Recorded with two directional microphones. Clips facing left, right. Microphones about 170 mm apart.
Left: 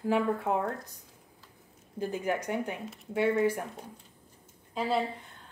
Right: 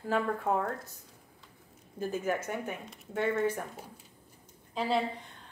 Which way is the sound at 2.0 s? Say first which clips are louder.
Left 1 dB; 15° left (ahead or behind).